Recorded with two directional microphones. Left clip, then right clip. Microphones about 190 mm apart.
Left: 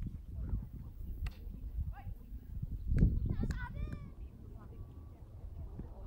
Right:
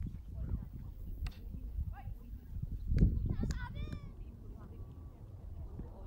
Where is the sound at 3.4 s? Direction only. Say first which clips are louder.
Even; 30° right (ahead or behind).